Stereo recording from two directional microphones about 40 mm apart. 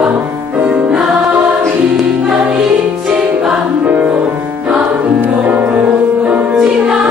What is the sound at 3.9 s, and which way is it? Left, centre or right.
Music, right.